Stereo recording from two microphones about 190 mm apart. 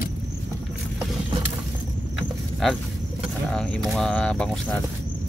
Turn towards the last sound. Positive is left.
turn(degrees=5)  # may be behind; listen again after turning